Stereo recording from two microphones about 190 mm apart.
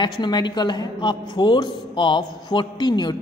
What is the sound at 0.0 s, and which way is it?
A man's voice, 25° left (ahead or behind).